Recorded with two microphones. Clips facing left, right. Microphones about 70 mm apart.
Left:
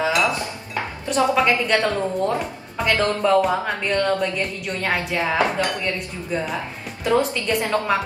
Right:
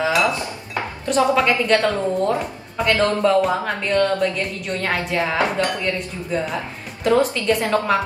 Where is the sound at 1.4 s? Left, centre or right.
Centre.